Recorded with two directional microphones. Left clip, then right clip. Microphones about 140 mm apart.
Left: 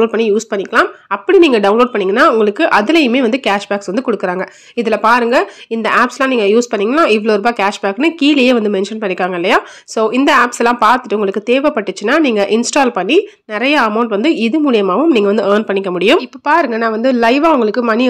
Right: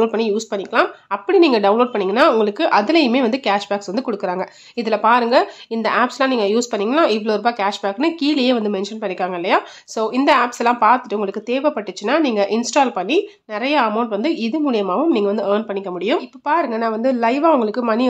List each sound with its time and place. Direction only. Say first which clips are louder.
0.0 s speech: left 5 dB; 15° left (ahead or behind); by 16.2 s 35° left (ahead or behind)
16.4 s speech: left 5 dB; 20° left (ahead or behind)